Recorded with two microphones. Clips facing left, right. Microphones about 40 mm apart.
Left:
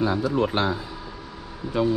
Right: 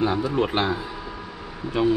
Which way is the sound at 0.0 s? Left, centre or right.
Right.